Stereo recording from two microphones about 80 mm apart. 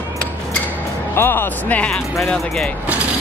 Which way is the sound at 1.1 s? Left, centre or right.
Left.